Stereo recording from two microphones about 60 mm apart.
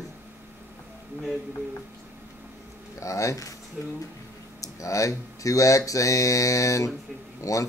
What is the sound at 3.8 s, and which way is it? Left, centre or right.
Speech, right.